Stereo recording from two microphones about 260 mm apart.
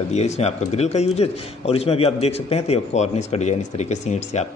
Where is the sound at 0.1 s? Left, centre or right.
Left.